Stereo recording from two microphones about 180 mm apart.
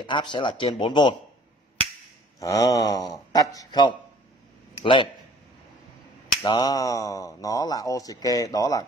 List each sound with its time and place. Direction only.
0.0 s speech: 25° left (ahead or behind)
2.4 s speech: 20° left (ahead or behind)
6.2 s speech: 25° left (ahead or behind)